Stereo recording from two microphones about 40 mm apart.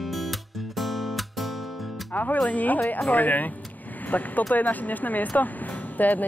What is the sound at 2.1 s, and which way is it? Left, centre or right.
Speech, left.